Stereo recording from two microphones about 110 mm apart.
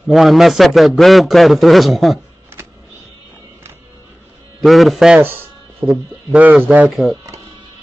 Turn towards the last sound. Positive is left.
turn(degrees=0)  # may be behind; listen again after turning